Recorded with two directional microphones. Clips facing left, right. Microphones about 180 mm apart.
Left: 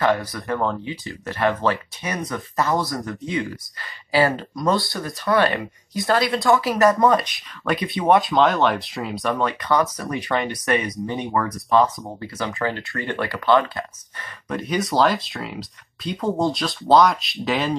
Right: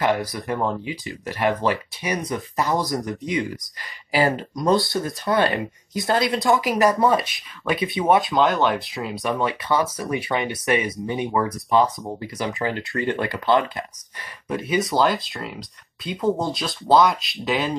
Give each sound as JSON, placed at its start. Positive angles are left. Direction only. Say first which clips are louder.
{"t": 0.2, "sound": "speech", "louder": "even", "side_deg": -15}
{"t": 14.5, "sound": "speech", "louder": "right 1 dB", "side_deg": -5}